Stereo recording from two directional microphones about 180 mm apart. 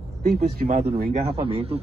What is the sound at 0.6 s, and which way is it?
Speech, 55° right (ahead or behind).